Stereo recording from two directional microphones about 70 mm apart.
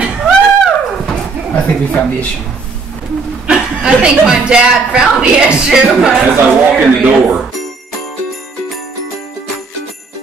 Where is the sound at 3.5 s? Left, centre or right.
Centre.